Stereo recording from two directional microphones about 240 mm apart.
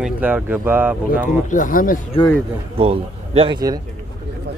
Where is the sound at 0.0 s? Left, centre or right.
Centre.